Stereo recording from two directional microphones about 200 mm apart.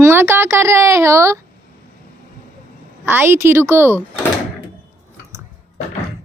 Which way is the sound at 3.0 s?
10° right (ahead or behind).